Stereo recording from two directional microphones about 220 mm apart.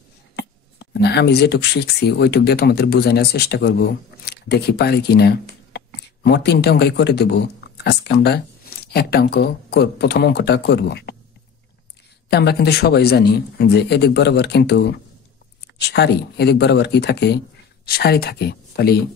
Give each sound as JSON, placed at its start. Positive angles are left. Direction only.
{"t": 0.4, "sound": "a man's voice", "side_deg": 50}
{"t": 12.3, "sound": "a man's voice", "side_deg": 45}